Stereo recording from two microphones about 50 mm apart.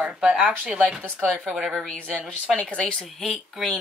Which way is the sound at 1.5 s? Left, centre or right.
Centre.